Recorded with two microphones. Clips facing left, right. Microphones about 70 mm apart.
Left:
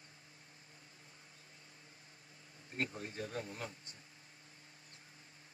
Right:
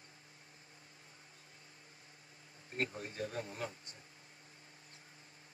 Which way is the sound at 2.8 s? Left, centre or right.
Right.